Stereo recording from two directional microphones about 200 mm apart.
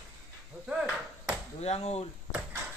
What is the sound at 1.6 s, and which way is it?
Speech, 30° left (ahead or behind).